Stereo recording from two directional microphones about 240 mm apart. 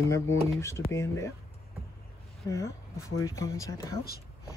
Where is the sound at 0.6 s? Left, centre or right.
Centre.